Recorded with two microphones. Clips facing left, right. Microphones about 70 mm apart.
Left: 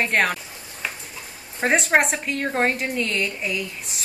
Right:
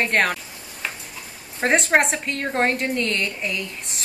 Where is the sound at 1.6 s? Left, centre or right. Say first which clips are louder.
Right 1 dB; centre.